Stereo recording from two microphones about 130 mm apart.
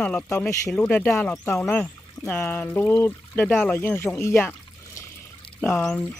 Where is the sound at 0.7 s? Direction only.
10° left (ahead or behind).